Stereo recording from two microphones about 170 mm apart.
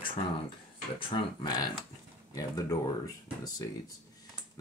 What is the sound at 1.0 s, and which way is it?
Speech, 25° left (ahead or behind).